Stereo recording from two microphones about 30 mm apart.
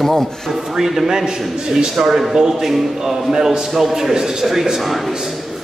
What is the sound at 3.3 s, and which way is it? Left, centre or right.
A man's voice, centre.